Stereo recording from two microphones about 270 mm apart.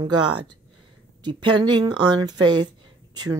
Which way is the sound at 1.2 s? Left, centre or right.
Centre.